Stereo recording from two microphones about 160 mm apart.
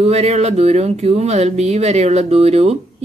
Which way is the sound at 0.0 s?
40° right (ahead or behind).